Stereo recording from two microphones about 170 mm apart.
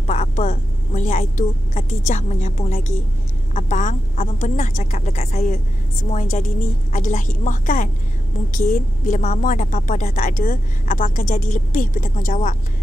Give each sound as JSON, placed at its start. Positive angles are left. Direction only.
{"t": 0.0, "sound": "a woman's voice", "side_deg": 45}